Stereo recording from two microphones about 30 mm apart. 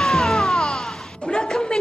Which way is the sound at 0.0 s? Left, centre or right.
Centre.